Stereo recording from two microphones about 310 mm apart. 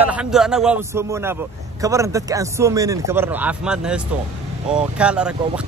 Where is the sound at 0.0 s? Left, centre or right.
Centre.